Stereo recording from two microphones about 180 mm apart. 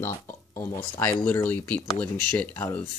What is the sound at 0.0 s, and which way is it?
Speech, 15° left (ahead or behind).